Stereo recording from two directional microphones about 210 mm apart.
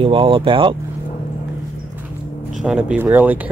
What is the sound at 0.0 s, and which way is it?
Speech, 25° right (ahead or behind).